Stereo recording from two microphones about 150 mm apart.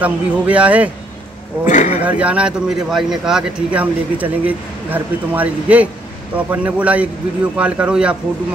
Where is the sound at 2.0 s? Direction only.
10° right (ahead or behind).